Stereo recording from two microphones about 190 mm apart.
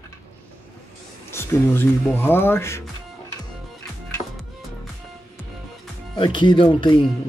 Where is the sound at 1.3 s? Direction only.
15° left (ahead or behind).